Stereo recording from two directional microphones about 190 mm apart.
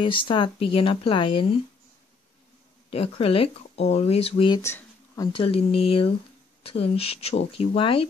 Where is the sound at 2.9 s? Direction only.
30° left (ahead or behind).